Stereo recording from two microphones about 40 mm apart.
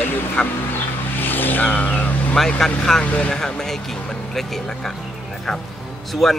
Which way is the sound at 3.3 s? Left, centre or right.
Centre.